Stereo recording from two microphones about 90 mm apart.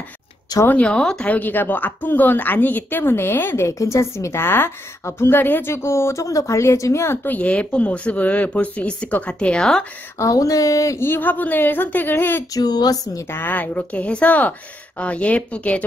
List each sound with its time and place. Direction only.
0.7 s speech: 15° left (ahead or behind)
7.3 s speech: 15° left (ahead or behind)
10.1 s speech: 35° left (ahead or behind)
11.0 s speech: 25° left (ahead or behind)
12.5 s speech: 50° left (ahead or behind)
13.3 s speech: 20° left (ahead or behind)